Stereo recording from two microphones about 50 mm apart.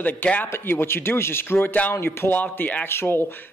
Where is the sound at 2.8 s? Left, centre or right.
Left.